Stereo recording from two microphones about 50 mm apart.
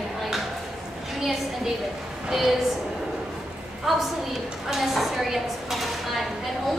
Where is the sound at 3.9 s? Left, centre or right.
Centre.